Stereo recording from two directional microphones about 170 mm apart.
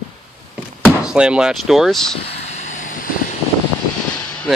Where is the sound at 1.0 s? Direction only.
5° right (ahead or behind).